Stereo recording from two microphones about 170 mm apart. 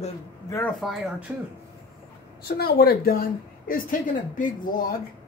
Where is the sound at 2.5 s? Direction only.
70° left (ahead or behind).